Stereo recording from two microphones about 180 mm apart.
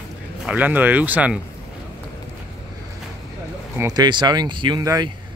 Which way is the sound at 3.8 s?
25° right (ahead or behind).